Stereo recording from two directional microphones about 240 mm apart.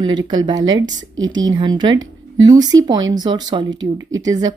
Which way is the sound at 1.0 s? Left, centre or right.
Right.